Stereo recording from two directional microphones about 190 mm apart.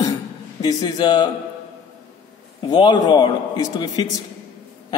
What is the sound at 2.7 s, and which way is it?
A man's voice, 25° left (ahead or behind).